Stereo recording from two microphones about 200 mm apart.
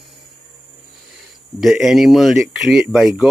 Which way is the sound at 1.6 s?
Centre (ahead or behind).